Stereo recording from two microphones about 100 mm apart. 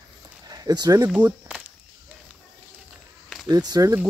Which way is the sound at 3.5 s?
40° right (ahead or behind).